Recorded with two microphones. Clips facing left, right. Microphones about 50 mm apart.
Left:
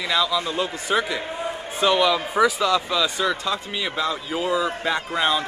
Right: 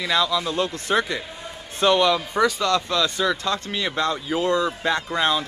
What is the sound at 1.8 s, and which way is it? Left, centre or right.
Speech, centre.